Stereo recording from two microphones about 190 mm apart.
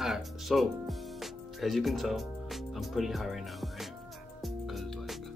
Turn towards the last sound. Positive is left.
turn(degrees=0)  # may be behind; listen again after turning